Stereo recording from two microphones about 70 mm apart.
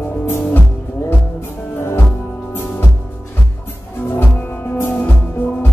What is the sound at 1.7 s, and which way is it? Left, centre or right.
Music, left.